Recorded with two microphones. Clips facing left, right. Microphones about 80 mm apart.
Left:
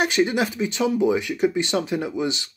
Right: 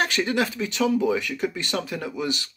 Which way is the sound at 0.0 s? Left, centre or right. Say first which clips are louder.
Left 3 dB; centre.